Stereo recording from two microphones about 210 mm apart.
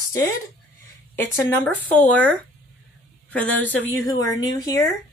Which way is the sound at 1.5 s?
10° left (ahead or behind).